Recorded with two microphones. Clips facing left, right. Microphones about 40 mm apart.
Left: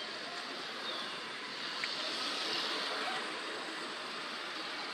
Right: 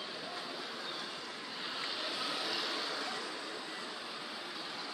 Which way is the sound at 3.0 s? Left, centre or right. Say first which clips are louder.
Left 2 dB; left.